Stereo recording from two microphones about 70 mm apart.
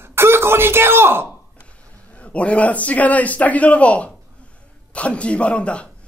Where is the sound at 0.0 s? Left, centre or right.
Right.